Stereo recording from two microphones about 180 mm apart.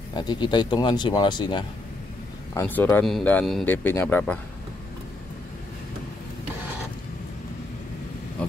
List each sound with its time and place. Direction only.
0.1 s speech: 25° left (ahead or behind)
2.5 s speech: 10° left (ahead or behind)